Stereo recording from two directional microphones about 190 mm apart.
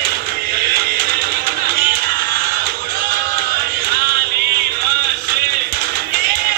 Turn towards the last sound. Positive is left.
turn(degrees=-50)  # may be behind; listen again after turning